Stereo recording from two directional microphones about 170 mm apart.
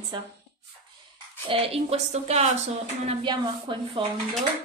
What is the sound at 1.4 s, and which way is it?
A woman's voice, 35° right (ahead or behind).